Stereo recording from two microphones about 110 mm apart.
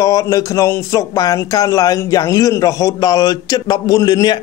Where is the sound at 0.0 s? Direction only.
30° left (ahead or behind).